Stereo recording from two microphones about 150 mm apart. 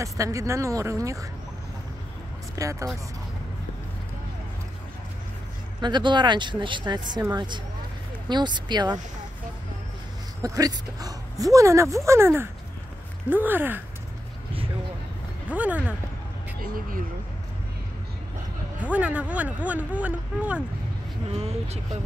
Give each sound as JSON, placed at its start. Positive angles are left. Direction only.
{"t": 0.0, "sound": "speech", "side_deg": -20}
{"t": 2.5, "sound": "speech", "side_deg": -20}
{"t": 5.8, "sound": "speech", "side_deg": -30}
{"t": 10.4, "sound": "speech", "side_deg": -25}
{"t": 15.5, "sound": "speech", "side_deg": -10}
{"t": 16.6, "sound": "a sound", "side_deg": -70}
{"t": 18.8, "sound": "speech", "side_deg": -10}
{"t": 21.3, "sound": "speech", "side_deg": -40}